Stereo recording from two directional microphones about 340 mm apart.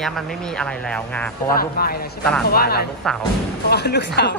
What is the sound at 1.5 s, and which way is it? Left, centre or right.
Speech, left.